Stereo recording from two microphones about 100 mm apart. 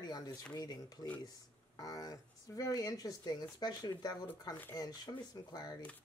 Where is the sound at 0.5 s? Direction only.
40° left (ahead or behind).